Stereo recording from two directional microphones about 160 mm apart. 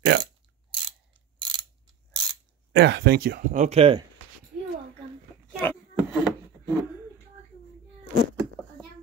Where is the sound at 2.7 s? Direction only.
90° right.